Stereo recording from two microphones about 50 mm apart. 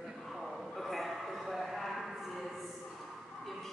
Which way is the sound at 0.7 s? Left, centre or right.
Centre.